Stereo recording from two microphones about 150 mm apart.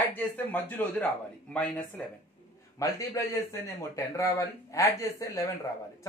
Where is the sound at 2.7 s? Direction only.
20° left (ahead or behind).